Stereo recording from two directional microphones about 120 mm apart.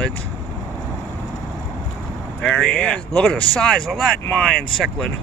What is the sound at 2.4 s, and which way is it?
Speech, 5° left (ahead or behind).